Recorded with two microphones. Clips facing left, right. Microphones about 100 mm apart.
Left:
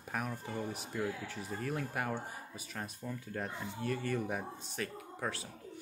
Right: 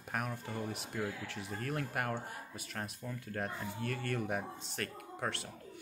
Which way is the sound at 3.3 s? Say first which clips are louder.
Right 3 dB; 50° right (ahead or behind).